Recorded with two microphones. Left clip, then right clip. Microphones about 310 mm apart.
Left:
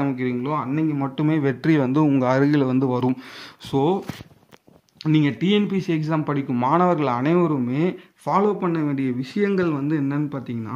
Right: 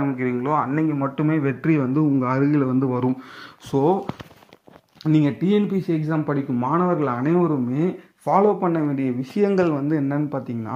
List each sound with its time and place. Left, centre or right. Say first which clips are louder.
0.0 s speech: right 1 dB; centre
5.0 s speech: right 1 dB; centre